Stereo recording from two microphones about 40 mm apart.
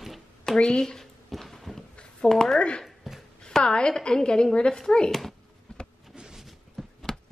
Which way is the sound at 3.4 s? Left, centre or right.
Left.